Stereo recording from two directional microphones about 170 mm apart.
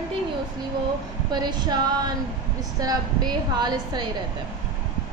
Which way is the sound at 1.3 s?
25° right (ahead or behind).